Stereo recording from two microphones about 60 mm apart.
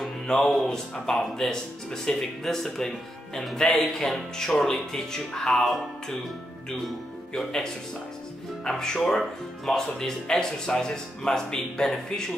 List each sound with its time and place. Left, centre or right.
0.0 s speech: centre
7.3 s speech: centre